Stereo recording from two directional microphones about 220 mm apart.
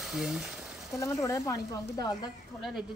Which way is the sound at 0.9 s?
15° left (ahead or behind).